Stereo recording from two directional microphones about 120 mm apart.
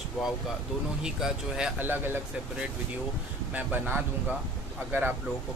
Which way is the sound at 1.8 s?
15° right (ahead or behind).